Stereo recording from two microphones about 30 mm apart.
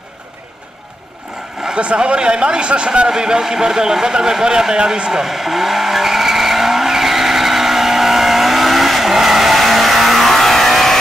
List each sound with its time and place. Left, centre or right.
1.8 s speech: right
3.1 s a man's voice: right
5.2 s vehicle: centre